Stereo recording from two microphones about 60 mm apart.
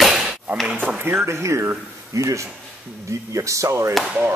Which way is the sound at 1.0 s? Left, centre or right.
Right.